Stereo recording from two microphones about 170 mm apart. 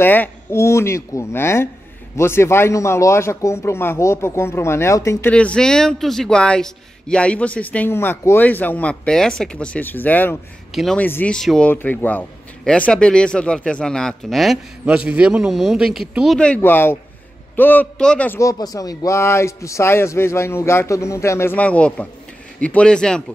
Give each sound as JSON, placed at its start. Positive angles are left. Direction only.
{"t": 0.0, "sound": "a man's voice", "side_deg": 10}
{"t": 5.3, "sound": "a man's voice", "side_deg": 5}
{"t": 10.7, "sound": "speech", "side_deg": 0}
{"t": 11.0, "sound": "a man's voice", "side_deg": 10}